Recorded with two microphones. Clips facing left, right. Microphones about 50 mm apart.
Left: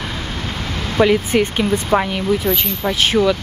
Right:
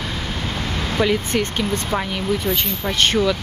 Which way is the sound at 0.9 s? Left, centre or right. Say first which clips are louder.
Left 6 dB; centre.